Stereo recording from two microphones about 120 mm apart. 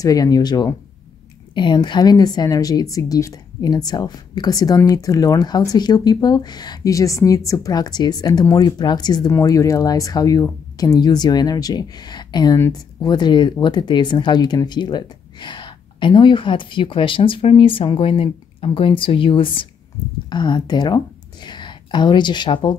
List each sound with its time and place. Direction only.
0.0 s a woman's voice: 30° left (ahead or behind)